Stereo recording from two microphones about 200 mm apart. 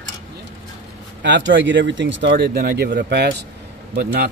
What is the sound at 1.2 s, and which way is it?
Speech, 65° right (ahead or behind).